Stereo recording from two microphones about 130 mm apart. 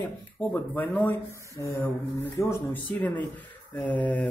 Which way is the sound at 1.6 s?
25° left (ahead or behind).